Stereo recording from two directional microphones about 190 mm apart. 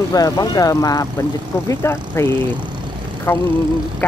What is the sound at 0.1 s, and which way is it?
Speech, 20° left (ahead or behind).